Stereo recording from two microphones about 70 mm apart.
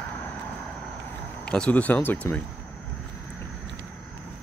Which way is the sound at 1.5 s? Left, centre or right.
Centre.